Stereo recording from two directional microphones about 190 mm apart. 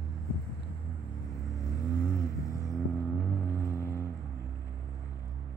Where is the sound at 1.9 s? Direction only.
20° left (ahead or behind).